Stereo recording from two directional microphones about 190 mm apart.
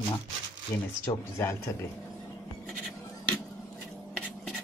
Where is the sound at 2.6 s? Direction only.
5° left (ahead or behind).